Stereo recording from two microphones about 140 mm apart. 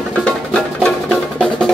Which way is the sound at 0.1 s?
5° left (ahead or behind).